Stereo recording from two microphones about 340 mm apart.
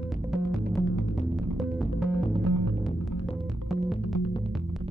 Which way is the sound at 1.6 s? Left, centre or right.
Centre.